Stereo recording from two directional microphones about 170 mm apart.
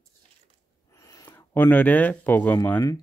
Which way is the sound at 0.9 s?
20° left (ahead or behind).